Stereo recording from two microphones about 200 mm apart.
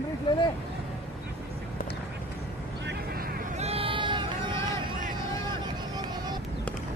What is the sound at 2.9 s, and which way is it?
Vehicle, 50° right (ahead or behind).